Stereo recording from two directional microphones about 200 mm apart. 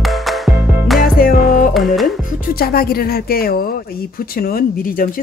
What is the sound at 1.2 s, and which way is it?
Music, 45° left (ahead or behind).